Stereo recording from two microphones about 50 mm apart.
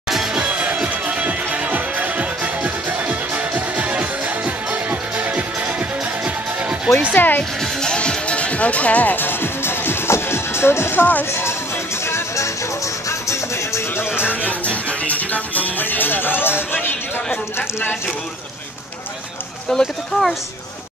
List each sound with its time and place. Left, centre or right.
0.1 s music: centre
0.4 s music: right
7.2 s speech: left
7.8 s music: centre; by 11.1 s left
13.3 s music: left
14.4 s music: left
19.7 s speech: centre